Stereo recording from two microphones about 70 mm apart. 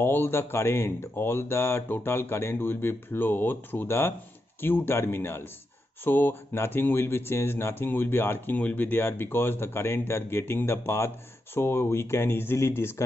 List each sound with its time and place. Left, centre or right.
0.0 s speech: left